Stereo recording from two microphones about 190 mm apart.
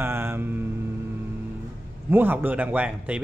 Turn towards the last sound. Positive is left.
turn(degrees=-5)  # may be behind; listen again after turning